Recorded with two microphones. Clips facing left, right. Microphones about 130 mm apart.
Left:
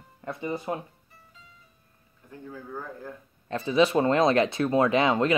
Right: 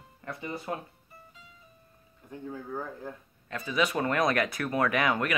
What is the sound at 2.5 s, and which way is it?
Speech, 20° right (ahead or behind).